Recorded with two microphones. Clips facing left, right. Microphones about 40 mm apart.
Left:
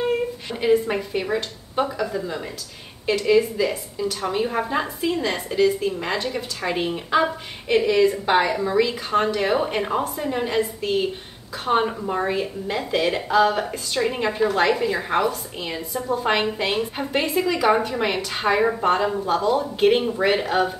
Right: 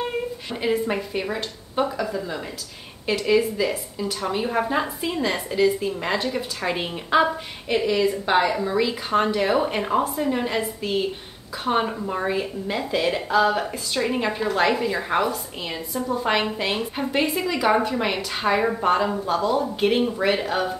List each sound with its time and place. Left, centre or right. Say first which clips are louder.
0.5 s a woman's voice: left 4 dB; centre
8.5 s a woman's voice: left 2 dB; centre
11.7 s a woman's voice: left 3 dB; centre